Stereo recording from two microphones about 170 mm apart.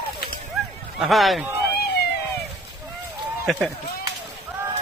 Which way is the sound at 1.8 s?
75° left (ahead or behind).